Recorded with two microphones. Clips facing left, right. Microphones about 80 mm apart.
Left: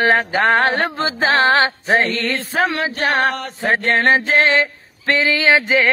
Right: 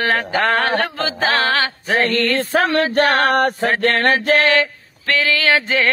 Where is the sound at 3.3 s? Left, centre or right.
Right.